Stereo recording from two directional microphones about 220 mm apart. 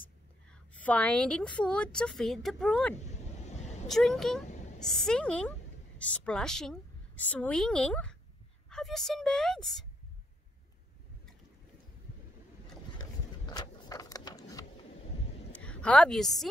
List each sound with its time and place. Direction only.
0.5 s a woman's voice: 5° left (ahead or behind)
3.4 s vehicle: 30° left (ahead or behind)
3.8 s a woman's voice: centre (ahead or behind)
4.5 s a sound: 35° left (ahead or behind)
4.7 s a woman's voice: centre (ahead or behind)
13.5 s a sound: 15° left (ahead or behind)
15.5 s a woman's voice: 5° left (ahead or behind)